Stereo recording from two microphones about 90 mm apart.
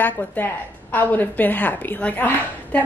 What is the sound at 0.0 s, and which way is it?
A woman's voice, 20° left (ahead or behind).